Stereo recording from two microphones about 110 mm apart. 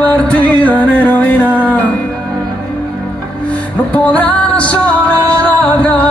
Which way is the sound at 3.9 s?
15° left (ahead or behind).